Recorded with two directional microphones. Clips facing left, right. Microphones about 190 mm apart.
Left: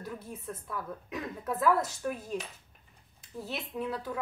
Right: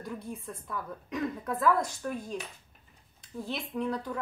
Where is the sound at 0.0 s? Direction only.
Centre (ahead or behind).